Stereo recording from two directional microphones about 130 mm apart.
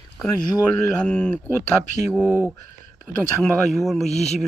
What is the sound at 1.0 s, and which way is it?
Speech, 10° left (ahead or behind).